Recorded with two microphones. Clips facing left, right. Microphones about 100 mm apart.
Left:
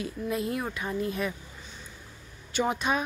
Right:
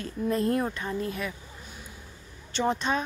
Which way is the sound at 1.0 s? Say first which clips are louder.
Left 4 dB; 25° left (ahead or behind).